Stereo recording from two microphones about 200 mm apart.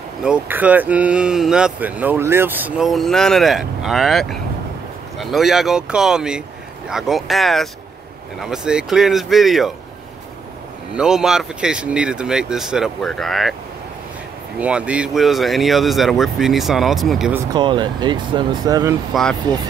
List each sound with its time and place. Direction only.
0.2 s speech: 5° right (ahead or behind)
11.0 s speech: 5° right (ahead or behind)
14.6 s speech: 5° right (ahead or behind)
17.6 s speech: 25° right (ahead or behind)